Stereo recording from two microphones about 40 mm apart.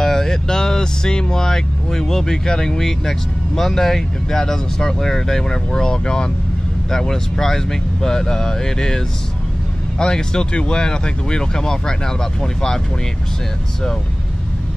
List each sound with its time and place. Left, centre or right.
0.0 s speech: centre